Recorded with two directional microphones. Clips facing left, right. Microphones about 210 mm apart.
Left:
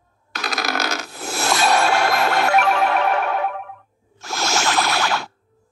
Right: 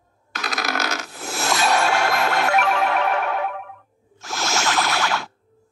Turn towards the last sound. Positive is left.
turn(degrees=35)  # may be behind; listen again after turning